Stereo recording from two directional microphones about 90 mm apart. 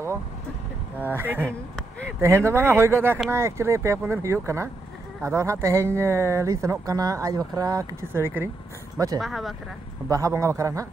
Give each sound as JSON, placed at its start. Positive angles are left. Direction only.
{"t": 1.0, "sound": "speech", "side_deg": -20}
{"t": 1.8, "sound": "a sound", "side_deg": 10}
{"t": 2.1, "sound": "speech", "side_deg": -25}
{"t": 8.1, "sound": "speech", "side_deg": -25}
{"t": 8.9, "sound": "speech", "side_deg": -40}
{"t": 9.2, "sound": "speech", "side_deg": 0}
{"t": 10.0, "sound": "speech", "side_deg": -40}